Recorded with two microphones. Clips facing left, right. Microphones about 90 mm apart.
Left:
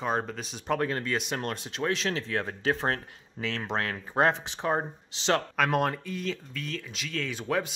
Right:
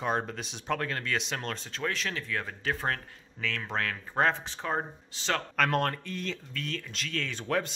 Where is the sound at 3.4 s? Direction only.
20° left (ahead or behind).